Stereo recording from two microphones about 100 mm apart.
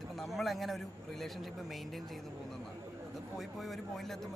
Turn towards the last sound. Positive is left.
turn(degrees=0)  # may be behind; listen again after turning